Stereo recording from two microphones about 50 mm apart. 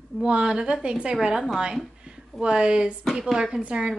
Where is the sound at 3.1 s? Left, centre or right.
Centre.